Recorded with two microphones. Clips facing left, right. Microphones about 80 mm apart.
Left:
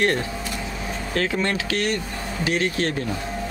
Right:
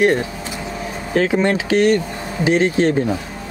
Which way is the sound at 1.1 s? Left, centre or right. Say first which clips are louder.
Right 8 dB; centre.